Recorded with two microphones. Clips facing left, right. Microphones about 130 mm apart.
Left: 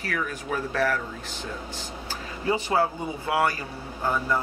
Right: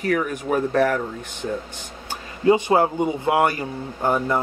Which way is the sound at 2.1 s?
20° right (ahead or behind).